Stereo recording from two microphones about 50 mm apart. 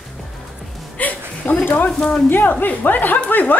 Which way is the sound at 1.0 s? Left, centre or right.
Left.